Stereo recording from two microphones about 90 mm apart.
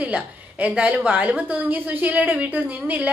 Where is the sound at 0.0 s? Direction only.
15° right (ahead or behind).